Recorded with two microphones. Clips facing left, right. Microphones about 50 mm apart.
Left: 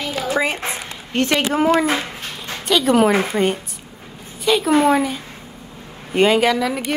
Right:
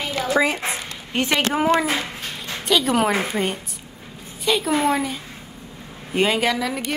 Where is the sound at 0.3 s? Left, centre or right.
Left.